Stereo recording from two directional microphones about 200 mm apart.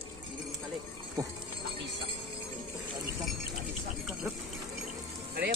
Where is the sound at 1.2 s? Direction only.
20° right (ahead or behind).